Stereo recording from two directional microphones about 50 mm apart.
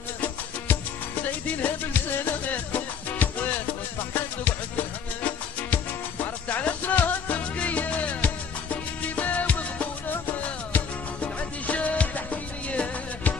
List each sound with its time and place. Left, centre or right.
1.2 s music: left
11.6 s music: left